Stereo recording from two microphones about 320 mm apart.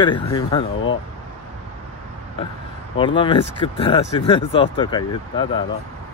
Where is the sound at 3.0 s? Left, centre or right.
Centre.